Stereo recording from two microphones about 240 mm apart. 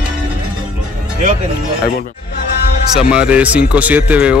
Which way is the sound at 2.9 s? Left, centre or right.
Centre.